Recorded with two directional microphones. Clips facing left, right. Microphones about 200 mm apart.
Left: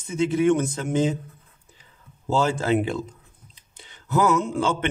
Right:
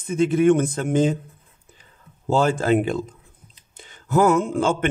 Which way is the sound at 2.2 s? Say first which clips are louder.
Right 3 dB; 55° right (ahead or behind).